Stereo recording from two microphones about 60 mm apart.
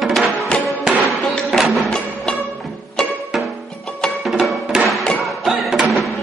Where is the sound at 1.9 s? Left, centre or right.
Centre.